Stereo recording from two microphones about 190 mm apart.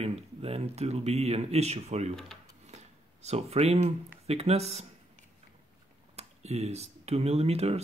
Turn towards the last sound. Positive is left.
turn(degrees=-35)  # may be behind; listen again after turning